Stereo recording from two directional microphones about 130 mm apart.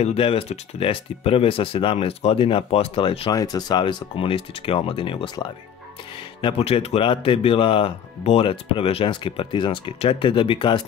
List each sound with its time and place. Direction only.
0.0 s speech: 50° left (ahead or behind)
3.3 s speech: 30° left (ahead or behind)
6.4 s speech: 50° left (ahead or behind)